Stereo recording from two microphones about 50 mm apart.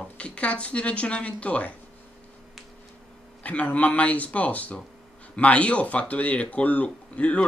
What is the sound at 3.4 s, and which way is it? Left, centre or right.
Speech, left.